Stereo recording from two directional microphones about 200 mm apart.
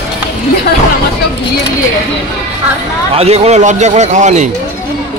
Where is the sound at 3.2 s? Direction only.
30° right (ahead or behind).